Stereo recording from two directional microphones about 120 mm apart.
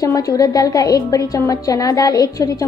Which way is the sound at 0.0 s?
30° left (ahead or behind).